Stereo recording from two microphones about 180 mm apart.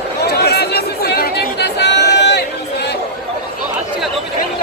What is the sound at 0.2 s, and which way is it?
Chatter, 65° left (ahead or behind).